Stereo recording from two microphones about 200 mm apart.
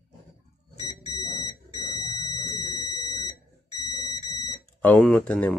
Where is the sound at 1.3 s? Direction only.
20° left (ahead or behind).